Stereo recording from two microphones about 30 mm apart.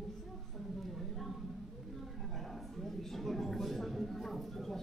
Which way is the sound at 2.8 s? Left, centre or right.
Centre.